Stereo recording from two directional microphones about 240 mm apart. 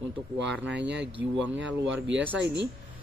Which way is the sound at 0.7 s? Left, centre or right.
Right.